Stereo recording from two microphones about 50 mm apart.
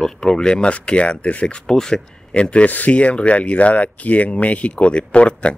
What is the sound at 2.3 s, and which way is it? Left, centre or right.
Speech, left.